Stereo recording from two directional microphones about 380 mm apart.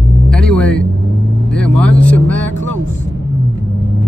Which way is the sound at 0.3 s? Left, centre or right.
Centre.